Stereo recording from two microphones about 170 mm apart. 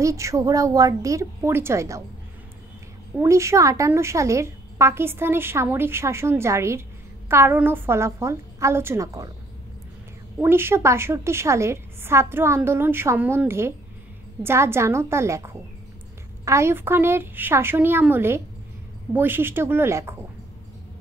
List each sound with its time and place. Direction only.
0.0 s a woman's voice: 20° right (ahead or behind)
3.2 s a woman's voice: 15° right (ahead or behind)
10.4 s a woman's voice: 15° right (ahead or behind)